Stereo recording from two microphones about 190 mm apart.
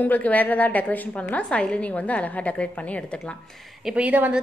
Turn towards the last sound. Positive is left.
turn(degrees=-10)  # may be behind; listen again after turning